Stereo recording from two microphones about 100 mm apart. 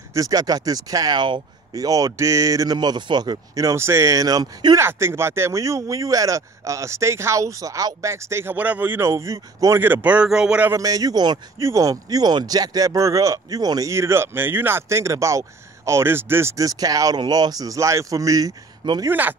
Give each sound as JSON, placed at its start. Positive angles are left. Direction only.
{"t": 0.1, "sound": "speech", "side_deg": -35}
{"t": 4.7, "sound": "speech", "side_deg": -25}
{"t": 10.0, "sound": "speech", "side_deg": -10}
{"t": 10.7, "sound": "speech", "side_deg": -35}
{"t": 19.0, "sound": "speech", "side_deg": -20}